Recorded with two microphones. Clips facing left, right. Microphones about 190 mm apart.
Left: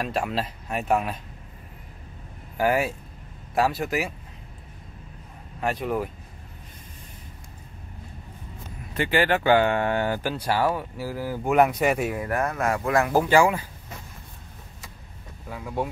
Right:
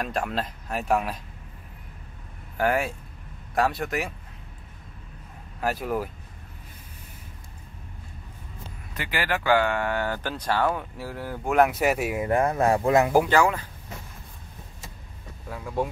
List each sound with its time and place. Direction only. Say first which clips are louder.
0.0 s speech: left 1 dB; 5° left (ahead or behind)
2.5 s speech: left 2 dB; 5° left (ahead or behind)
5.6 s speech: left 1 dB; centre (ahead or behind)
8.9 s speech: left 6 dB; 25° left (ahead or behind); by 12.2 s 5° right (ahead or behind)
12.2 s speech: right 4 dB; 25° right (ahead or behind)
13.3 s speech: left 2 dB; 10° left (ahead or behind)
15.5 s speech: right 1 dB; centre (ahead or behind)